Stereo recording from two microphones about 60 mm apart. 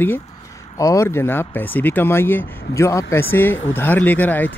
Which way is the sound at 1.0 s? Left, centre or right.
Left.